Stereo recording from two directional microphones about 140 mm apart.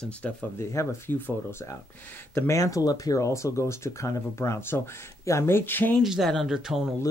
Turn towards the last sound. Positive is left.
turn(degrees=-5)  # may be behind; listen again after turning